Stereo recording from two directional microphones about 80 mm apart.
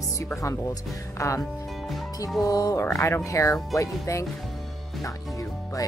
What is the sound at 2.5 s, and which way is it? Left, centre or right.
Speech, left.